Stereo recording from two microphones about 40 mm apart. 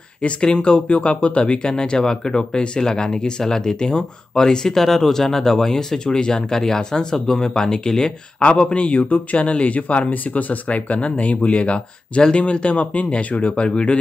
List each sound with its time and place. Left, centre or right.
0.2 s speech: left
1.7 s speech: centre
8.4 s a man's voice: left